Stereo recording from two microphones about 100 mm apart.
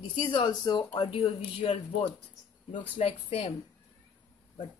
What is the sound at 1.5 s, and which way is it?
Speech, 55° left (ahead or behind).